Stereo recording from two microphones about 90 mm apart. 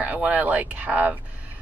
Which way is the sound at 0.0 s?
15° right (ahead or behind).